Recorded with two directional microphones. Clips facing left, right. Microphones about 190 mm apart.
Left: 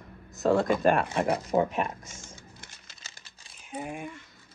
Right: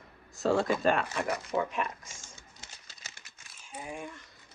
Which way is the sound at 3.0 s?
30° left (ahead or behind).